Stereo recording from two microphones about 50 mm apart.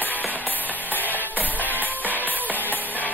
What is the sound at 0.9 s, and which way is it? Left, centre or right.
Music, left.